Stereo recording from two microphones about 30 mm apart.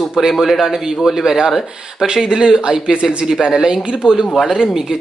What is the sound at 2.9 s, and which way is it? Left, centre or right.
Speech, right.